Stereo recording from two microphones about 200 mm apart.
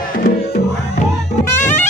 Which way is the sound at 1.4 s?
10° left (ahead or behind).